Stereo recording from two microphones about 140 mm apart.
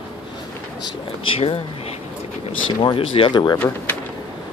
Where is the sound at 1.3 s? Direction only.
45° left (ahead or behind).